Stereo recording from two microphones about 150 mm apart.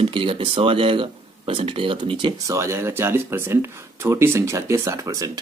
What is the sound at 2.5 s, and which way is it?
Speech, 20° right (ahead or behind).